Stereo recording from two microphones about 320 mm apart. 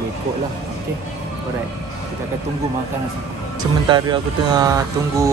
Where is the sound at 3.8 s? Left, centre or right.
Centre.